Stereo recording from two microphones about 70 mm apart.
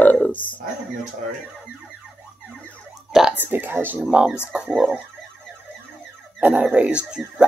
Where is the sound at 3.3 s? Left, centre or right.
Right.